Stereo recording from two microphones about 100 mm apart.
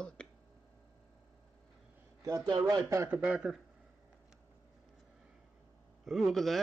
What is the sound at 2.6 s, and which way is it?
Speech, 30° right (ahead or behind).